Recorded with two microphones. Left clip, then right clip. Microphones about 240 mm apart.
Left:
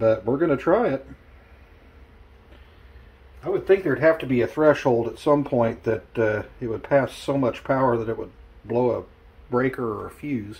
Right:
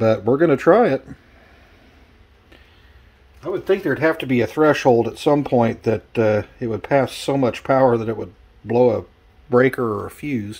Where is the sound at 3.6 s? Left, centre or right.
Right.